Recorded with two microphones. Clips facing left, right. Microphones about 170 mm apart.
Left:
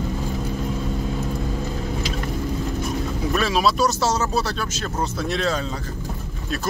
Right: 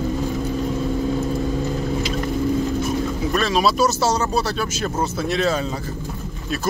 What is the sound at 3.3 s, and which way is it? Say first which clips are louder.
Speech: right 1 dB; 5° left (ahead or behind).